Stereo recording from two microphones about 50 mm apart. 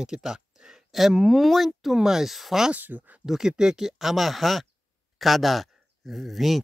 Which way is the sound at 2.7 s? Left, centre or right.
Right.